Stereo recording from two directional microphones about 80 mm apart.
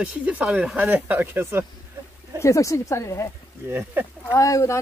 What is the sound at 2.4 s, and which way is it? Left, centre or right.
Speech, left.